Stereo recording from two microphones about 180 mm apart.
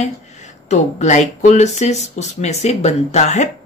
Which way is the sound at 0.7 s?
40° left (ahead or behind).